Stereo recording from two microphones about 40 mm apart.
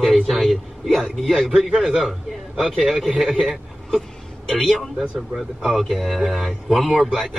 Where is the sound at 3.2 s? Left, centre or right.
Centre.